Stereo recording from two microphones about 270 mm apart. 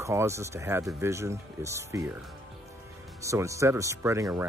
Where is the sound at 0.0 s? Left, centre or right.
Centre.